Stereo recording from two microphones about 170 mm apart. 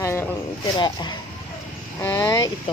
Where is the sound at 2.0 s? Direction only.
15° left (ahead or behind).